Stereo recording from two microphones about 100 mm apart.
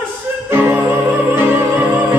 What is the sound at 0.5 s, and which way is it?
Music, 20° right (ahead or behind).